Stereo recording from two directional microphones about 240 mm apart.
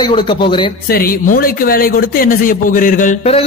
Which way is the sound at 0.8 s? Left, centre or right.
Left.